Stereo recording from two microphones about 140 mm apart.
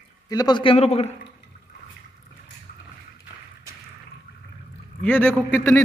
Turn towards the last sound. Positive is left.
turn(degrees=15)  # may be behind; listen again after turning